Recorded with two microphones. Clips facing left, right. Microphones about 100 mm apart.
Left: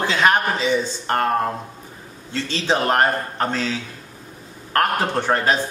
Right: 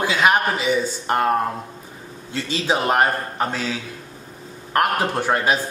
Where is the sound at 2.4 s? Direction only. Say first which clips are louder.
Left 1 dB; 10° right (ahead or behind).